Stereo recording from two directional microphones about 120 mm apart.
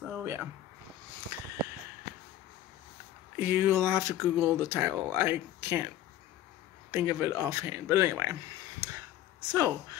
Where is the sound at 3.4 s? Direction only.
20° right (ahead or behind).